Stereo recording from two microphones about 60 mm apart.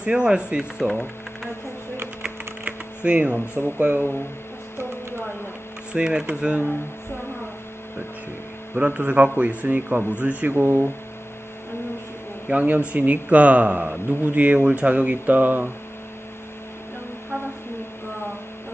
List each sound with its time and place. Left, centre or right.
0.0 s speech: centre
0.7 s speech: centre
2.6 s a sound: right
3.7 s speech: right
5.9 s speech: centre
8.7 s speech: right
12.4 s speech: right